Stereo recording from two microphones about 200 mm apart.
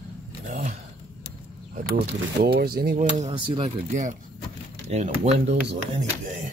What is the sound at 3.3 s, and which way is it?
Speech, 25° right (ahead or behind).